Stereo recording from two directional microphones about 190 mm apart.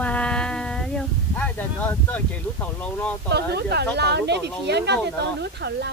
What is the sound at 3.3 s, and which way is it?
Speech, 60° right (ahead or behind).